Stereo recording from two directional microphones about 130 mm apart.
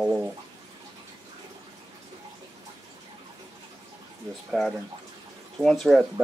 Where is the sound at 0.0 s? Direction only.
10° right (ahead or behind).